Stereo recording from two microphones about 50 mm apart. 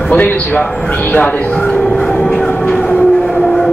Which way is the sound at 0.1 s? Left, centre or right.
Left.